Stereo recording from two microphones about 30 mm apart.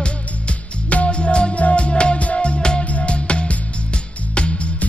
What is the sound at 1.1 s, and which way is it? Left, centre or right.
Music, left.